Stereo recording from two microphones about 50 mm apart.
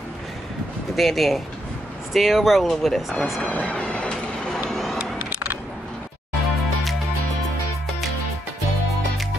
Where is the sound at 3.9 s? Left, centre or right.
Centre.